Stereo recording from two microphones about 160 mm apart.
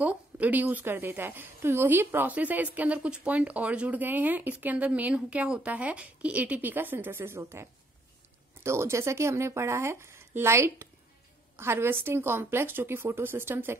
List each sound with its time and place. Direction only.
0.0 s a woman's voice: 10° right (ahead or behind)
8.6 s a woman's voice: 15° right (ahead or behind)